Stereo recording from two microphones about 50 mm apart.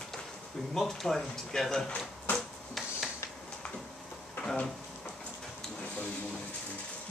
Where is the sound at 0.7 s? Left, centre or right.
Centre.